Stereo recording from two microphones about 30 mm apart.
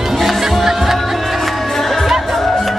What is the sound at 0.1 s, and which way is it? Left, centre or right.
Music, centre.